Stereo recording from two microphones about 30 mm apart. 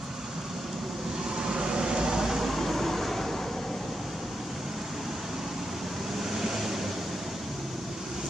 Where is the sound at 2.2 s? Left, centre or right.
Centre.